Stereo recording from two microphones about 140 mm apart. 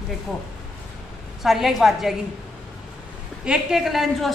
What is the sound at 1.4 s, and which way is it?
Speech, centre (ahead or behind).